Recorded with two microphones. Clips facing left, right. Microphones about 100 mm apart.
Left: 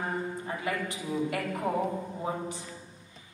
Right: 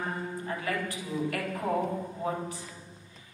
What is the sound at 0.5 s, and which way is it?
A man's voice, 20° left (ahead or behind).